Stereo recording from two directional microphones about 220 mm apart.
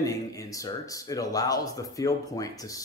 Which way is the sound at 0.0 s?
15° left (ahead or behind).